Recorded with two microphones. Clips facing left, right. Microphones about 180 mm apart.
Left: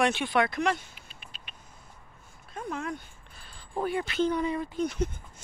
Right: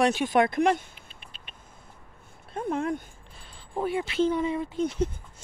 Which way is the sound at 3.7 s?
Centre (ahead or behind).